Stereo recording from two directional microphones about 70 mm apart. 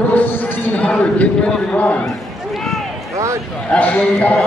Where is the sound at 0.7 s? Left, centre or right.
Centre.